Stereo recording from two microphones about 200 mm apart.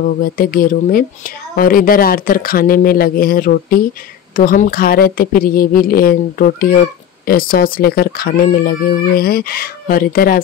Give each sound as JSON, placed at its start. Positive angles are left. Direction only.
{"t": 0.0, "sound": "speech", "side_deg": 45}